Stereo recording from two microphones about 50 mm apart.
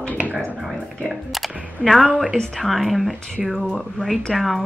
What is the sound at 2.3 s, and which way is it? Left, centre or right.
Speech, centre.